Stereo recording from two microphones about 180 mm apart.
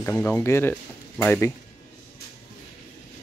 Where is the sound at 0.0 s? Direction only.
10° left (ahead or behind).